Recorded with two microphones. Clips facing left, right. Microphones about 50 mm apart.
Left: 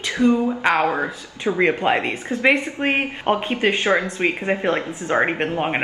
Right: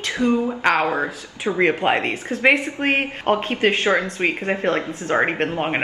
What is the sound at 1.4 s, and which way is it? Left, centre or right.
Speech, centre.